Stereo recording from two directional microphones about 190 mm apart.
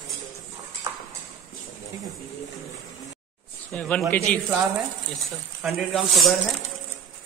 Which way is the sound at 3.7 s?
5° left (ahead or behind).